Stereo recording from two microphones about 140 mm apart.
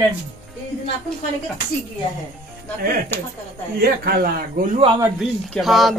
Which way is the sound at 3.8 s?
90° right.